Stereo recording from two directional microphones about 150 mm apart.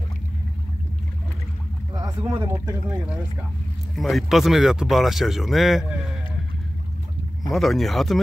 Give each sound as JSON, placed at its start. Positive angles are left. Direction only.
{"t": 2.0, "sound": "speech", "side_deg": -25}
{"t": 3.9, "sound": "speech", "side_deg": 0}
{"t": 7.5, "sound": "speech", "side_deg": 0}